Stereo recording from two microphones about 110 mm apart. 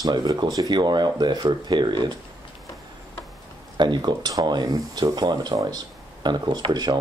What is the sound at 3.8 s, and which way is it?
Speech, 40° right (ahead or behind).